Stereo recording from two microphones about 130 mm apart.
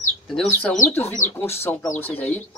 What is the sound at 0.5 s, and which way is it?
Speech, 10° left (ahead or behind).